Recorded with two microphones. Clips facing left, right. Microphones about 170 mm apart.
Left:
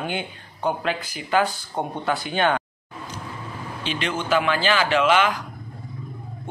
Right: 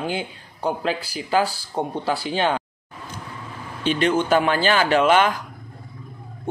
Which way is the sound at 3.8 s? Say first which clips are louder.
Right 6 dB; 45° right (ahead or behind).